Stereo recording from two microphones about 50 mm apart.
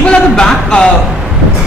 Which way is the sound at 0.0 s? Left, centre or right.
Centre.